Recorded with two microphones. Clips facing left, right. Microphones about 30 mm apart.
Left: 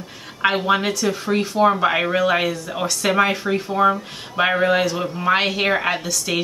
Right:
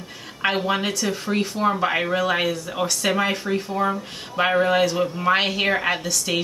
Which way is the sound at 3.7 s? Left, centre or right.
Left.